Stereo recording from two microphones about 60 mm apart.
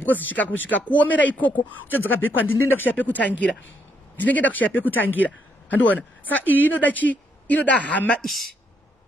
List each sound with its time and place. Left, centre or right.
0.0 s speech: left
8.2 s a woman's voice: centre